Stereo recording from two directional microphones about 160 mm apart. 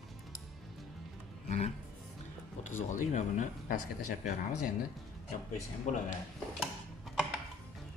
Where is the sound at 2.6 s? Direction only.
50° left (ahead or behind).